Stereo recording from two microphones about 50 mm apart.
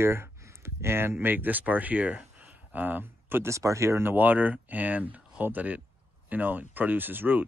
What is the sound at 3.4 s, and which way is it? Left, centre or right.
Speech, right.